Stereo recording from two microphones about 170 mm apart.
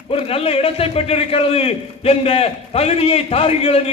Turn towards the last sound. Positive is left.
turn(degrees=35)  # may be behind; listen again after turning